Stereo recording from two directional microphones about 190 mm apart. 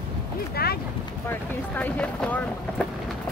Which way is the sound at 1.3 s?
10° left (ahead or behind).